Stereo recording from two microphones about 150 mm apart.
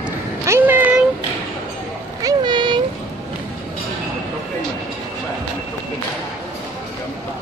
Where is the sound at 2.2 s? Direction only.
30° right (ahead or behind).